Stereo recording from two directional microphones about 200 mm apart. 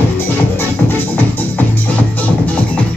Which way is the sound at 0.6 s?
10° left (ahead or behind).